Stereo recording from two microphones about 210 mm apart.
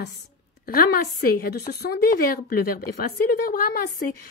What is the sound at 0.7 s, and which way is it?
A woman's voice, 45° left (ahead or behind).